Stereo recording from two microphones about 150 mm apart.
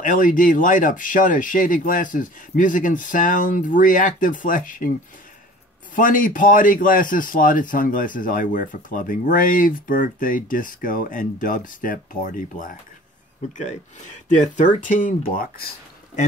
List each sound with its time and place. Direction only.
0.0 s a man's voice: 60° left (ahead or behind)
5.9 s a man's voice: 65° left (ahead or behind)